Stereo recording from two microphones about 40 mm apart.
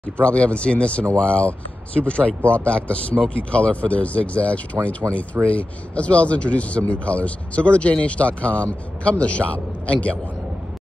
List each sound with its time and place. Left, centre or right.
0.2 s speech: left